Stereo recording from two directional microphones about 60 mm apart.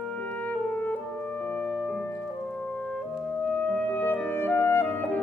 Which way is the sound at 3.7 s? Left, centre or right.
Left.